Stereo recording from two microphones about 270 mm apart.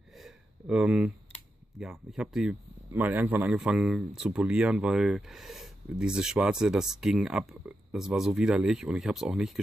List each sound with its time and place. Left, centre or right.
0.2 s speech: centre